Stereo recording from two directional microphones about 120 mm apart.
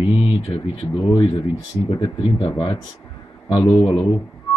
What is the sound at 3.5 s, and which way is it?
Speech, 40° left (ahead or behind).